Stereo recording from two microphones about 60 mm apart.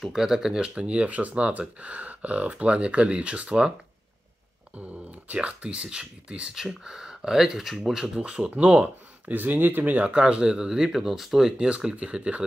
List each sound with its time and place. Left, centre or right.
0.0 s speech: centre
0.7 s speech: centre
5.3 s speech: centre
11.5 s speech: centre